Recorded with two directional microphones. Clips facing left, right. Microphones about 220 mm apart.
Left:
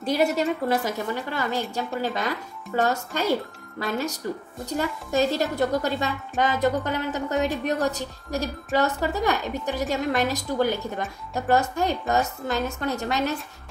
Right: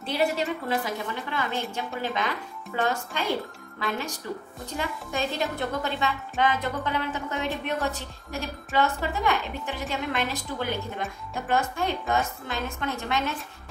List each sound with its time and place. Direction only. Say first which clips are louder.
0.0 s a woman's voice: left 4 dB; 40° left (ahead or behind)
4.6 s a woman's voice: left 5 dB; 40° left (ahead or behind)